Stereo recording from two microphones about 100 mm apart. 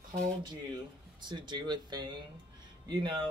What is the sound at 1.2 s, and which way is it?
Speech, 50° right (ahead or behind).